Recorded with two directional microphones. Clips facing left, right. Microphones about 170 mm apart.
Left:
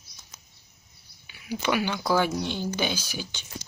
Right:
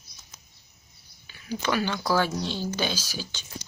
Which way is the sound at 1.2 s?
15° left (ahead or behind).